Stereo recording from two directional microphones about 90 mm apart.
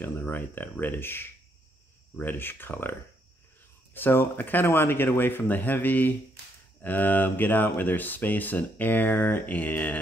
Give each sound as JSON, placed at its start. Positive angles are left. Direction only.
{"t": 0.0, "sound": "speech", "side_deg": 20}